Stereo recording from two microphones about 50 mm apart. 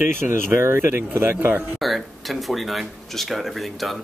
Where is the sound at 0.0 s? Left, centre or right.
Right.